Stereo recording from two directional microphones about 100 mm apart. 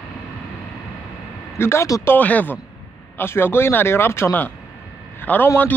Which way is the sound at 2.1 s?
15° left (ahead or behind).